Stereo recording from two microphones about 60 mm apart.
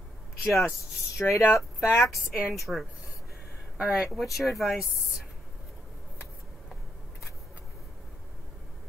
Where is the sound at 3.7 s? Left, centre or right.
Centre.